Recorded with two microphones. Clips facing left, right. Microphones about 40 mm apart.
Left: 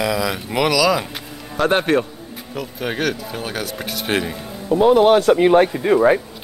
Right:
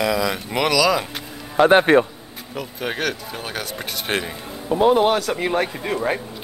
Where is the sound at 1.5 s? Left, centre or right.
Centre.